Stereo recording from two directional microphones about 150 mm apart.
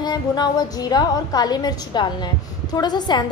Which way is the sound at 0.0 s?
30° left (ahead or behind).